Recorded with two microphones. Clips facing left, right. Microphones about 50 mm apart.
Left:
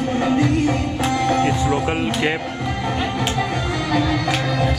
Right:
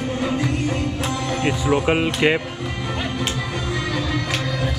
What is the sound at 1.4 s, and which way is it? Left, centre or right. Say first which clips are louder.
Speech: left 1 dB; centre.